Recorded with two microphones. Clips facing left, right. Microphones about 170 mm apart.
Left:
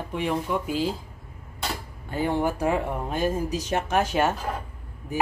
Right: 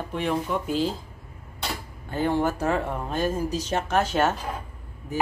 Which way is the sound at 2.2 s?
15° left (ahead or behind).